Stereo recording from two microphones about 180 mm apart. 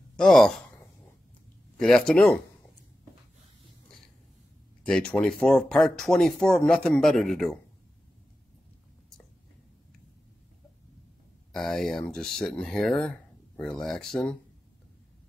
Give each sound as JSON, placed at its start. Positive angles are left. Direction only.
{"t": 0.1, "sound": "speech", "side_deg": 5}
{"t": 1.8, "sound": "speech", "side_deg": 5}
{"t": 4.8, "sound": "speech", "side_deg": 5}
{"t": 11.5, "sound": "speech", "side_deg": 0}